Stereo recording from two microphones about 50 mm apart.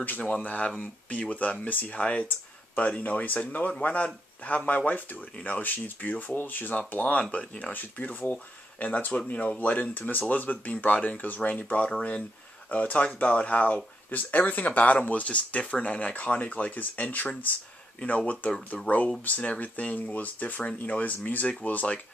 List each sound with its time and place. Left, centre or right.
0.2 s speech: left
1.6 s speech: left
2.0 s speech: left